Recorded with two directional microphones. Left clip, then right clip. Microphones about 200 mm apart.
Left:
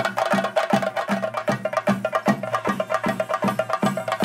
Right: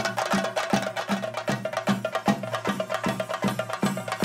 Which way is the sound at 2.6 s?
15° left (ahead or behind).